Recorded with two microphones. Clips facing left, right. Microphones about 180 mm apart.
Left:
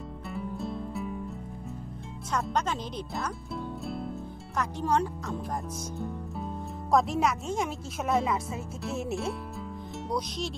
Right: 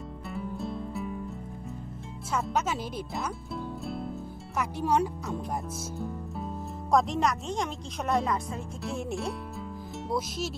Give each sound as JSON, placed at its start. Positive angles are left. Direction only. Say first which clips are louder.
{"t": 0.3, "sound": "music", "louder": "even", "side_deg": 0}
{"t": 2.3, "sound": "speech", "louder": "even", "side_deg": -5}